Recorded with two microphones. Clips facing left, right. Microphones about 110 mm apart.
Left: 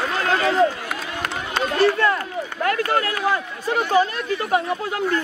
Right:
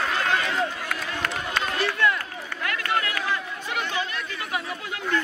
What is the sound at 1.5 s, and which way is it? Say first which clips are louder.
Run: left 9 dB; 35° left (ahead or behind).